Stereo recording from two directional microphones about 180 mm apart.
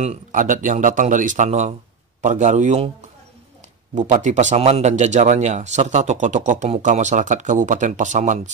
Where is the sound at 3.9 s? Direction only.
40° right (ahead or behind).